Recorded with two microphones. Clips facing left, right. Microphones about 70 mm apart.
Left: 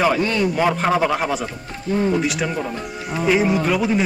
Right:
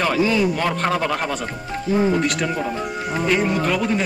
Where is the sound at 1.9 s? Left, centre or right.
Centre.